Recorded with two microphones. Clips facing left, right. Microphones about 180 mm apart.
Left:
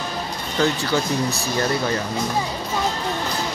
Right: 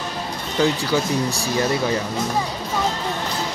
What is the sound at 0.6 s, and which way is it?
Speech, 10° right (ahead or behind).